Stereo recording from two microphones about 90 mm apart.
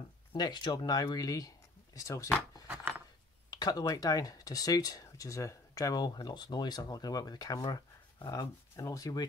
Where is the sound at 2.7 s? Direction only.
20° right (ahead or behind).